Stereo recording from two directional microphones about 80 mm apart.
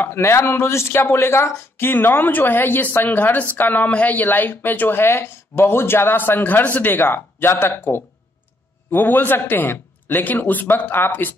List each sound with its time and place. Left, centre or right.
0.0 s speech: left